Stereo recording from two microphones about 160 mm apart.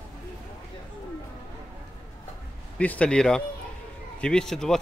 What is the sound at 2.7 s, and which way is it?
Speech, 10° left (ahead or behind).